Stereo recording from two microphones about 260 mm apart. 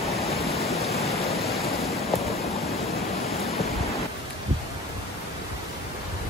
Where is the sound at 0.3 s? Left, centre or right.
Left.